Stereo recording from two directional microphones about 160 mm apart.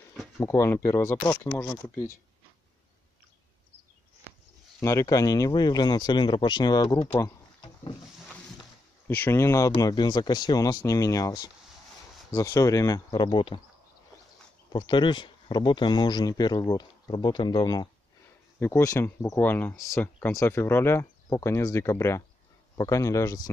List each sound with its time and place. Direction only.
0.4 s speech: 15° left (ahead or behind)
4.7 s speech: 20° left (ahead or behind)
9.0 s speech: 15° left (ahead or behind); by 13.6 s 30° left (ahead or behind)
14.7 s speech: 30° left (ahead or behind)